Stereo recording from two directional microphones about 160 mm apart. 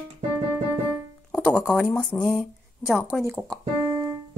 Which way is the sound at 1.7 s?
10° left (ahead or behind).